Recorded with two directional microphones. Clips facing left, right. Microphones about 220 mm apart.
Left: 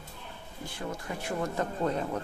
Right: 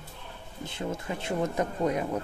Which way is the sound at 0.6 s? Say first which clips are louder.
Right 4 dB; 25° right (ahead or behind).